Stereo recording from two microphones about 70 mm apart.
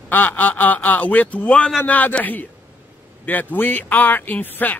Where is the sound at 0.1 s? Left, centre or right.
Left.